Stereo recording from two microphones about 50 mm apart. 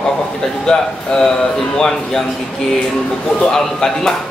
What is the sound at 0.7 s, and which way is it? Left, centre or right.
Speech, centre.